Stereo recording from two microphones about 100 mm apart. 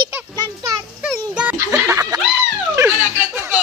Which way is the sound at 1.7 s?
35° right (ahead or behind).